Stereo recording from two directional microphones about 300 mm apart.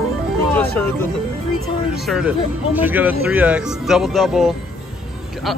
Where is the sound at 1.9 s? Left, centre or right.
Centre.